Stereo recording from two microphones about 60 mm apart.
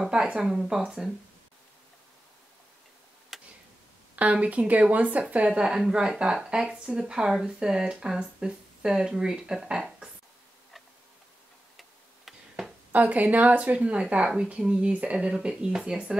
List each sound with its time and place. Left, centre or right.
0.1 s speech: centre
3.3 s tick-tock: centre
4.1 s speech: right
5.5 s speech: centre
12.3 s a sound: centre
12.9 s speech: right